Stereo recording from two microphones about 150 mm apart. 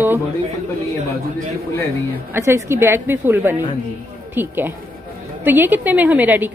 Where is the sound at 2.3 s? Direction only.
15° right (ahead or behind).